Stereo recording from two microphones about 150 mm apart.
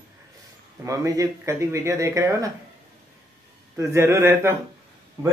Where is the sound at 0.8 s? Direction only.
20° right (ahead or behind).